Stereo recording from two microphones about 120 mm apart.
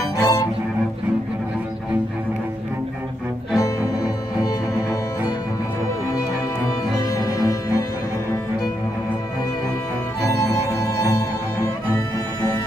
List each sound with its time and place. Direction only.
0.2 s music: 30° left (ahead or behind)
3.5 s music: 25° left (ahead or behind)
7.0 s music: 30° left (ahead or behind)